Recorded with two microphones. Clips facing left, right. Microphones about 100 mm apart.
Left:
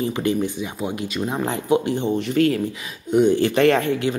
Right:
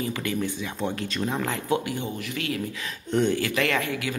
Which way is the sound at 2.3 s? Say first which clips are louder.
Left 13 dB; 40° left (ahead or behind).